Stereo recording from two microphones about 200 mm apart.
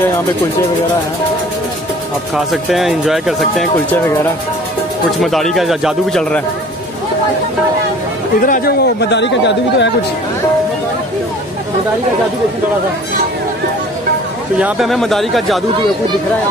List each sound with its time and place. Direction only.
2.3 s speech: centre (ahead or behind)
8.4 s speech: 45° left (ahead or behind); by 9.8 s 60° left (ahead or behind)
14.6 s speech: centre (ahead or behind)